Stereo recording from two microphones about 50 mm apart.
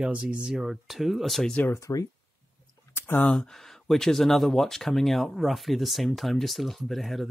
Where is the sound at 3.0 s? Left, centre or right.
Left.